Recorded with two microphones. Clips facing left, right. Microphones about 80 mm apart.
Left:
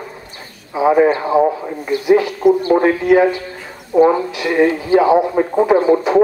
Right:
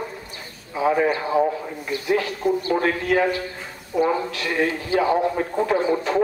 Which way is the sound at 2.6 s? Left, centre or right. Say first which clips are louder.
Left 8 dB; left.